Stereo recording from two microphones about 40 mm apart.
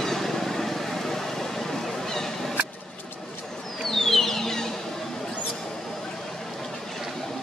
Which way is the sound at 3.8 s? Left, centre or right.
Centre.